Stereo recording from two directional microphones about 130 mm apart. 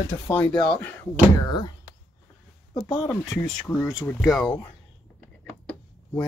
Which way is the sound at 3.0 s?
20° left (ahead or behind).